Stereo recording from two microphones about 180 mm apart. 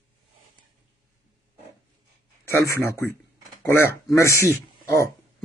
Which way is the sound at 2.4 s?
15° left (ahead or behind).